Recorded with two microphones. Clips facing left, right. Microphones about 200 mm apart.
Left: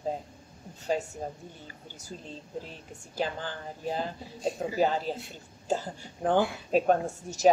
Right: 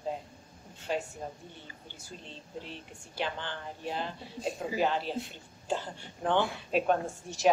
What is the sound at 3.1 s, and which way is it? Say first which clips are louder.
A woman's voice: left 3 dB; 40° left (ahead or behind).